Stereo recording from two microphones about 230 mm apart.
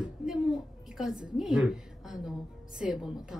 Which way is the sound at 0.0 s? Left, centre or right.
Centre.